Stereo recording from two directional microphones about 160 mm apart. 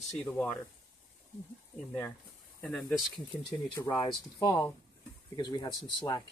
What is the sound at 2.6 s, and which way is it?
Speech, 10° left (ahead or behind).